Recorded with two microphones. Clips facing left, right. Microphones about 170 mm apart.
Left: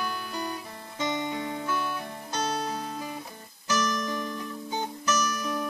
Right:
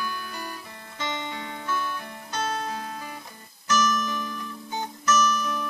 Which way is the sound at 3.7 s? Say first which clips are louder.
Right 3 dB; 25° left (ahead or behind).